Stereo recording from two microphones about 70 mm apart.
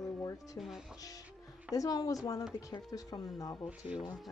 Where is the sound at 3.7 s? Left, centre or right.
Centre.